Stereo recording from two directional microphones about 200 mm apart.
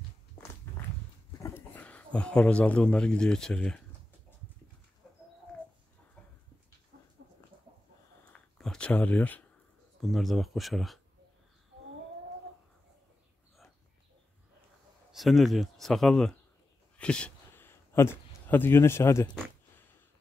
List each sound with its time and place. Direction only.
1.4 s dog: 10° left (ahead or behind)
2.1 s speech: 5° left (ahead or behind)
5.0 s bird: centre (ahead or behind)
6.9 s a sound: 60° right (ahead or behind)
8.3 s a sound: 5° left (ahead or behind)
10.0 s speech: centre (ahead or behind)
15.1 s speech: centre (ahead or behind)